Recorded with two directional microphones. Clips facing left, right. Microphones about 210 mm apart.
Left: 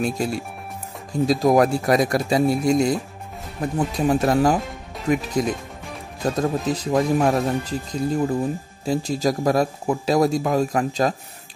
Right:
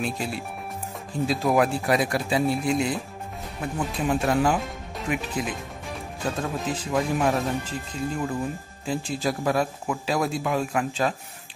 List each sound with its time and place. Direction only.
0.0 s speech: 40° left (ahead or behind)